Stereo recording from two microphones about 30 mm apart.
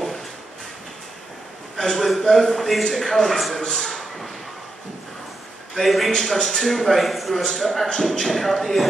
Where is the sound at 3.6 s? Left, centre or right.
Centre.